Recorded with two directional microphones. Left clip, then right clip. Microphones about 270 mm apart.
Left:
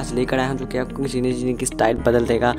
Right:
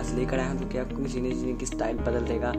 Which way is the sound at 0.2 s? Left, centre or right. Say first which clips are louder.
Left 9 dB; left.